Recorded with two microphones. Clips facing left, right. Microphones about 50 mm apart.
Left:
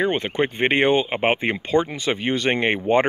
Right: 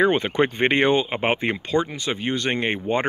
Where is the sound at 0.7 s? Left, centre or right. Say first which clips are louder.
Left 4 dB; centre.